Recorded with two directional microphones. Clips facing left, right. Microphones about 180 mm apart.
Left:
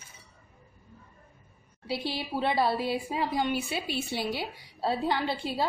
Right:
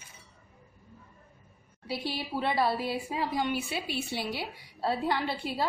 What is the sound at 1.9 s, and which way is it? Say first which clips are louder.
A woman's voice: left 2 dB; 25° left (ahead or behind).